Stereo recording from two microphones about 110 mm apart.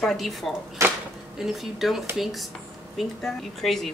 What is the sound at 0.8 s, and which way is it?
Speech, 25° right (ahead or behind).